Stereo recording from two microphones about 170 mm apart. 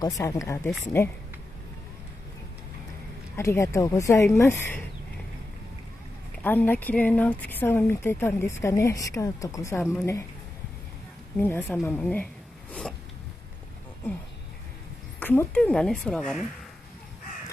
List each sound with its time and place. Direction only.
0.0 s speech: 20° left (ahead or behind)
3.3 s speech: 15° left (ahead or behind)
6.4 s speech: 10° left (ahead or behind)
11.3 s speech: 10° left (ahead or behind)
15.1 s a woman's voice: 10° left (ahead or behind)